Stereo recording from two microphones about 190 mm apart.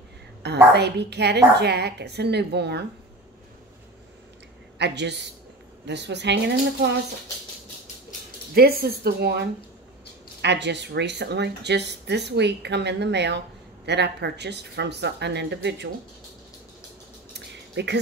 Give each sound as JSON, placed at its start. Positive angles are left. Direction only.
{"t": 0.4, "sound": "speech", "side_deg": -60}
{"t": 4.7, "sound": "speech", "side_deg": -65}
{"t": 8.5, "sound": "speech", "side_deg": -55}
{"t": 17.3, "sound": "a sound", "side_deg": -60}